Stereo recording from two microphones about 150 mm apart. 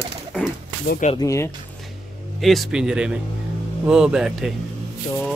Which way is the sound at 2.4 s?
Centre (ahead or behind).